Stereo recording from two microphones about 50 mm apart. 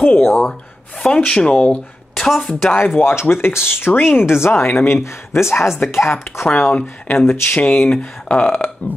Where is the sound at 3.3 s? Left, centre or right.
Left.